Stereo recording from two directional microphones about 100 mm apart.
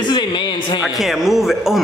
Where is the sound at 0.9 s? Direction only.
Centre (ahead or behind).